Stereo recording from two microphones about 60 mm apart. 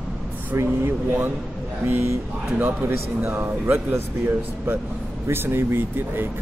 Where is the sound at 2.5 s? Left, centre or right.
Right.